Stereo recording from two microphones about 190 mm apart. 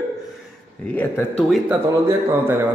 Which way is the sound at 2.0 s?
10° right (ahead or behind).